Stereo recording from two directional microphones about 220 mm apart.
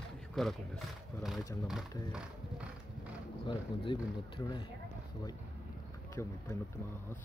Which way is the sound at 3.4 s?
20° left (ahead or behind).